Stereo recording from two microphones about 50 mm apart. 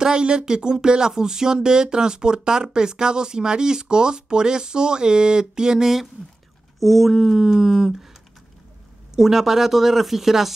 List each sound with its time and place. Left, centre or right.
0.0 s speech: centre
9.1 s speech: centre